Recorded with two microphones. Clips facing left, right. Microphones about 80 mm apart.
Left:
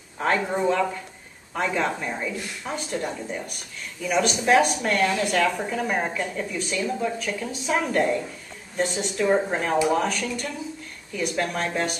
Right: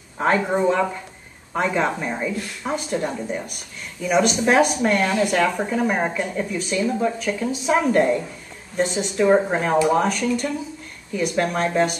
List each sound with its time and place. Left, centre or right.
0.2 s speech: centre
9.3 s speech: centre
9.8 s speech: centre